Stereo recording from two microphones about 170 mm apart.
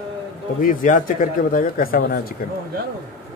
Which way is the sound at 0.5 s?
50° left (ahead or behind).